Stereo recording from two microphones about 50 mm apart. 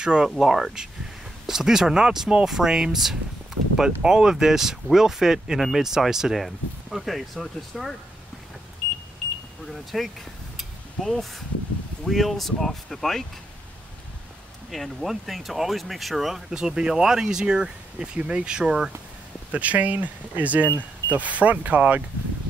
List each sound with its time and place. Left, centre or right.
0.0 s speech: centre
9.7 s speech: centre
14.7 s speech: centre; by 18.7 s right
19.5 s speech: right